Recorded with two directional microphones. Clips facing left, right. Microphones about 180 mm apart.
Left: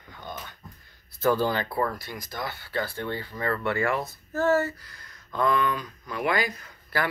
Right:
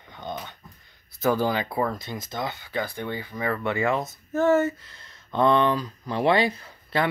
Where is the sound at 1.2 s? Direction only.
15° right (ahead or behind).